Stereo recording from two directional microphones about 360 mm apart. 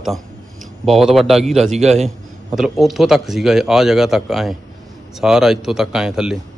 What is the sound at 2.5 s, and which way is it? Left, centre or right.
A man's voice, centre.